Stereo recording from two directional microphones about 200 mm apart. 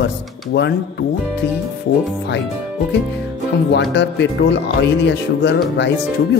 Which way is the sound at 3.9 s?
60° left (ahead or behind).